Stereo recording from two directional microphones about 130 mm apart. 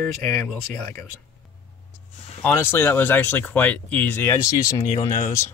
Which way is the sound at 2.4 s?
15° left (ahead or behind).